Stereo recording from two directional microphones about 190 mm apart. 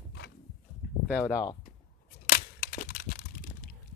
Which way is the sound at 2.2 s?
50° left (ahead or behind).